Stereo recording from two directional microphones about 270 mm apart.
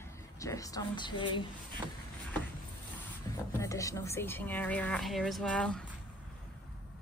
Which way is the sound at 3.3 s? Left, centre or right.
Centre.